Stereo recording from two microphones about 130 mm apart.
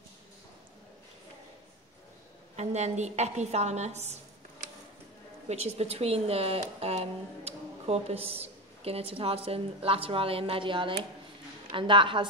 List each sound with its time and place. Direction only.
2.5 s a woman's voice: 60° right (ahead or behind)
5.5 s a woman's voice: 55° right (ahead or behind); by 12.3 s 40° right (ahead or behind)